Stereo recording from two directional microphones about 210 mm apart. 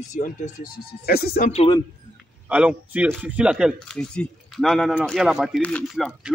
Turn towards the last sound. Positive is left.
turn(degrees=0)  # may be behind; listen again after turning